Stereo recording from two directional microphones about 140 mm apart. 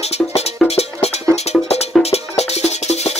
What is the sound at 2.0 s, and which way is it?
Music, 50° left (ahead or behind).